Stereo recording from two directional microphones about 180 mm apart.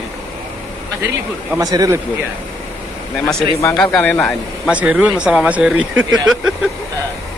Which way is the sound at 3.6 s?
10° left (ahead or behind).